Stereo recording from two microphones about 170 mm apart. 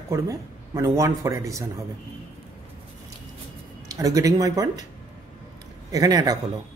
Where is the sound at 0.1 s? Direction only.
20° right (ahead or behind).